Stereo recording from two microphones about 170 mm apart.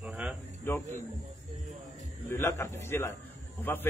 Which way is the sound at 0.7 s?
15° left (ahead or behind).